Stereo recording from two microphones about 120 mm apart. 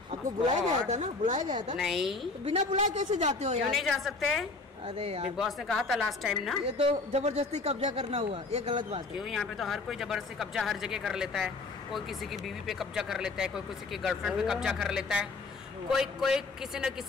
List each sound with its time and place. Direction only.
0.6 s speech: 75° right (ahead or behind)
1.8 s speech: centre (ahead or behind)
2.4 s a woman's voice: 65° right (ahead or behind)
3.7 s speech: centre (ahead or behind)
4.8 s speech: 55° right (ahead or behind)
5.4 s speech: centre (ahead or behind)
6.6 s speech: 55° right (ahead or behind)
9.2 s speech: centre (ahead or behind)